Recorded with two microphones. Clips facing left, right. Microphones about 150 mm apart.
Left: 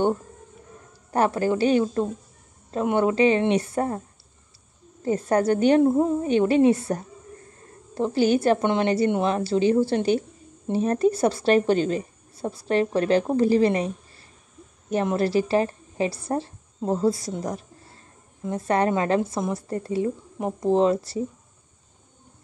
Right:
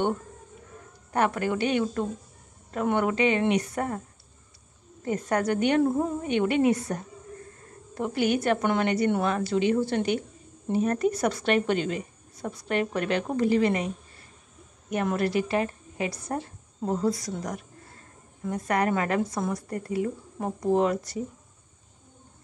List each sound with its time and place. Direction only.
1.1 s a woman's voice: 35° left (ahead or behind)
5.0 s a woman's voice: 30° left (ahead or behind)
6.2 s a woman's voice: 35° left (ahead or behind)
20.3 s speech: 15° left (ahead or behind)
20.7 s a woman's voice: 25° left (ahead or behind)